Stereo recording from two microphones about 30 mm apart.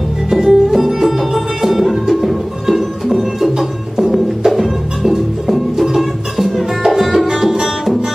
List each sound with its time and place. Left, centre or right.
0.3 s music: centre
3.5 s music: centre
4.5 s music: centre